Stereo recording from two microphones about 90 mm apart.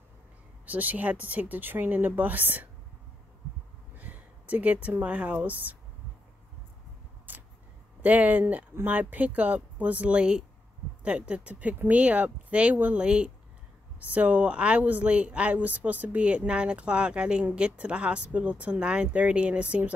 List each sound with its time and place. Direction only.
0.7 s speech: 20° right (ahead or behind)
4.0 s a sound: 15° right (ahead or behind)
4.8 s speech: 15° right (ahead or behind)
8.0 s speech: 20° right (ahead or behind)